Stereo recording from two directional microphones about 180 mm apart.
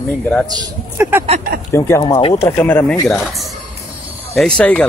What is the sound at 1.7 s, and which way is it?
Speech, 15° left (ahead or behind).